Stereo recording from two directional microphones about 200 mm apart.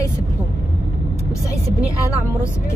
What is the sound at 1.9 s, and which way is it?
Speech, 15° left (ahead or behind).